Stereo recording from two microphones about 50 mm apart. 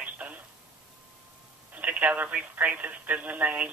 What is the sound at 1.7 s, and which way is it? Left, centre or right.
Telephone, right.